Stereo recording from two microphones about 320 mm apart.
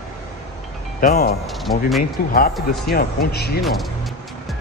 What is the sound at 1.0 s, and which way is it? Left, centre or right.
Speech, left.